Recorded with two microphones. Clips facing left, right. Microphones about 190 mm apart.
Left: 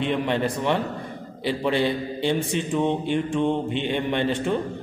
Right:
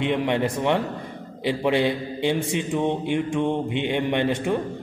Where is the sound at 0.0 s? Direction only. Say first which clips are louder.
Right 1 dB; 15° right (ahead or behind).